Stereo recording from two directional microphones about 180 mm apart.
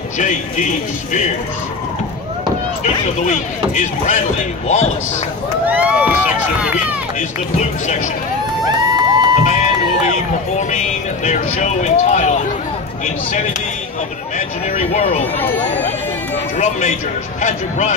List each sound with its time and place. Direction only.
0.2 s speech: 45° left (ahead or behind)
2.8 s speech: 40° left (ahead or behind)
5.7 s a sound: 10° right (ahead or behind)
8.7 s a sound: 25° right (ahead or behind)
11.2 s speech: 40° left (ahead or behind)
14.8 s speech: 35° left (ahead or behind)
15.3 s speech: 10° left (ahead or behind)
16.5 s speech: 40° left (ahead or behind)